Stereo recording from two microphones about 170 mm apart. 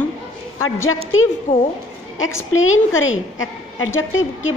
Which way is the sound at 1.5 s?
50° left (ahead or behind).